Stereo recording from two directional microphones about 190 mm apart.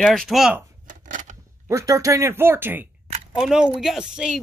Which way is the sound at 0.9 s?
40° right (ahead or behind).